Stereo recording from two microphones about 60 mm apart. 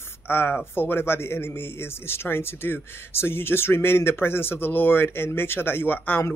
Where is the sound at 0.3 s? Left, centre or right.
Left.